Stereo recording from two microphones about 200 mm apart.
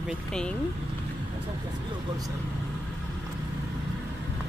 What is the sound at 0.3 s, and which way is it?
Speech, 5° left (ahead or behind).